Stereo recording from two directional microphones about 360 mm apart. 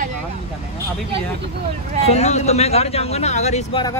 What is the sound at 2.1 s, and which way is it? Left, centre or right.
Speech, centre.